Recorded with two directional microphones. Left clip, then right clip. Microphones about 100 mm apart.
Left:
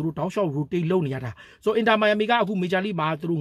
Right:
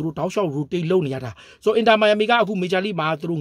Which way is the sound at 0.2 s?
25° right (ahead or behind).